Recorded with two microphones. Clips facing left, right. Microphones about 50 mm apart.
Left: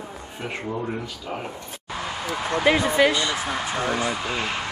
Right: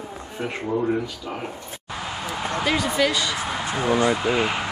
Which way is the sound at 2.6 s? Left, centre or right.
Left.